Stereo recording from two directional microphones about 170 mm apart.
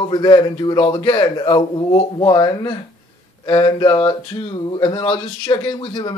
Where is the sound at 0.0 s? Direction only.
25° left (ahead or behind).